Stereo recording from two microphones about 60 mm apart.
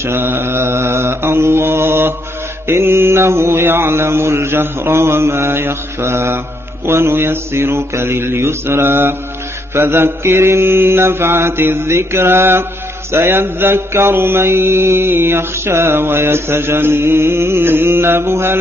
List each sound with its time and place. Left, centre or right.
0.0 s mantra: right